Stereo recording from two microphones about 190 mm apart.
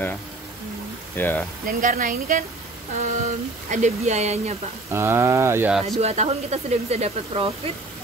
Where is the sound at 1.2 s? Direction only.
10° left (ahead or behind).